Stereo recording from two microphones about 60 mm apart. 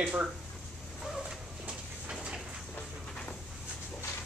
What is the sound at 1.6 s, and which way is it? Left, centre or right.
Train, centre.